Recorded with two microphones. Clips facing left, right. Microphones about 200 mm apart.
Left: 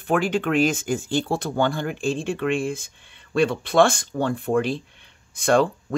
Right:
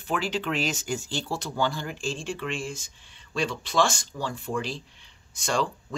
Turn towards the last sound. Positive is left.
turn(degrees=55)  # may be behind; listen again after turning